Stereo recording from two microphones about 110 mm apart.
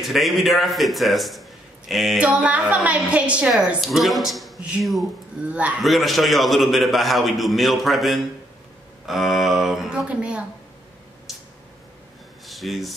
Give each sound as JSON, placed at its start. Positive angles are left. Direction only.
{"t": 0.0, "sound": "a man's voice", "side_deg": 0}
{"t": 2.1, "sound": "a woman's voice", "side_deg": -10}
{"t": 12.4, "sound": "speech", "side_deg": 0}